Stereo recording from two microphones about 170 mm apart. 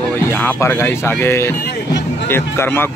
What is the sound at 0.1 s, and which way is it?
Speech, 10° left (ahead or behind).